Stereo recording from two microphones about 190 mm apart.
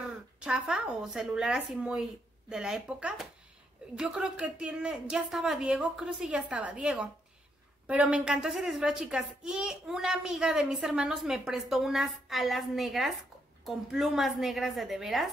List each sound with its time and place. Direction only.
0.4 s a woman's voice: 5° right (ahead or behind)